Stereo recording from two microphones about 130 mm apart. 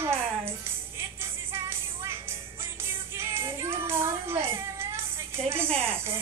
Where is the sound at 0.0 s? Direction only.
20° right (ahead or behind).